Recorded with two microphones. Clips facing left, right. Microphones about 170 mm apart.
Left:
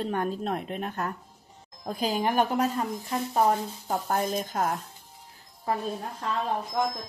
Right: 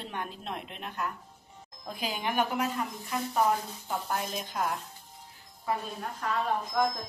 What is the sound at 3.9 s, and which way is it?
Speech, 45° left (ahead or behind).